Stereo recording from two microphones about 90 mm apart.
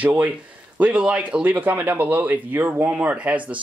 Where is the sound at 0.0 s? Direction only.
15° right (ahead or behind).